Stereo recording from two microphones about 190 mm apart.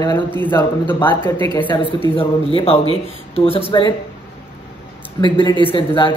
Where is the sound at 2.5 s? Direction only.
30° left (ahead or behind).